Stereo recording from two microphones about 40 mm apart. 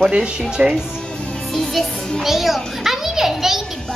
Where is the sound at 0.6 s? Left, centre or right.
Right.